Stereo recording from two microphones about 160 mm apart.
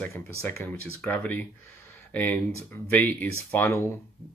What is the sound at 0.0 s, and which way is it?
Speech, 15° left (ahead or behind).